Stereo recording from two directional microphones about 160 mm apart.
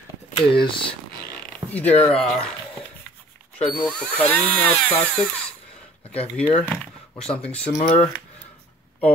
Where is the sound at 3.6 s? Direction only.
5° left (ahead or behind).